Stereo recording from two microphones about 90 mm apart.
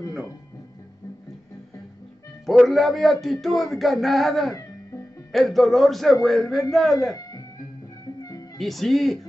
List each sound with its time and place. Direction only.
2.7 s speech: centre (ahead or behind)
8.2 s music: 40° left (ahead or behind)
8.5 s speech: centre (ahead or behind)